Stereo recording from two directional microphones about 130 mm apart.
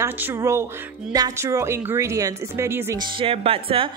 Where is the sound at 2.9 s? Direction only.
45° right (ahead or behind).